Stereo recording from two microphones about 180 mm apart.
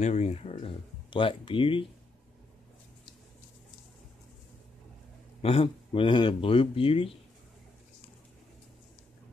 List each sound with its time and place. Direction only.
0.0 s speech: 40° left (ahead or behind)
5.4 s speech: 30° left (ahead or behind)